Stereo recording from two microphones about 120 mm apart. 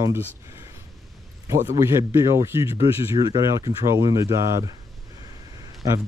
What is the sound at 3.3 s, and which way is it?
Speech, 30° right (ahead or behind).